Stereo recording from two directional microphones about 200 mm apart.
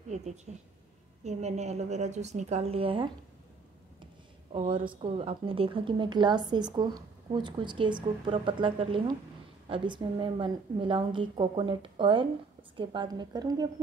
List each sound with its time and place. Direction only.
1.2 s a woman's voice: 35° right (ahead or behind)